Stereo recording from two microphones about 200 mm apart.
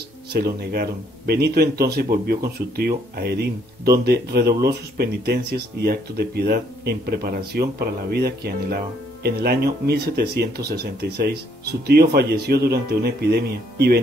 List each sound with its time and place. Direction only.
0.3 s speech: 50° right (ahead or behind)